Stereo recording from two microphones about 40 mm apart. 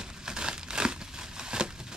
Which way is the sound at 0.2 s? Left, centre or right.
Centre.